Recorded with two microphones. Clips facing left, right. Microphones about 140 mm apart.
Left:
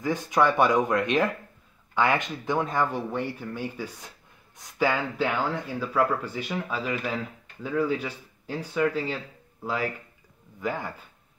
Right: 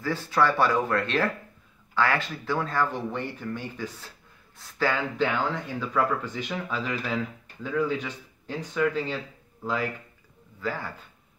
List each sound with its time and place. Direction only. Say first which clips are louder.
0.0 s speech: left 1 dB; 15° left (ahead or behind)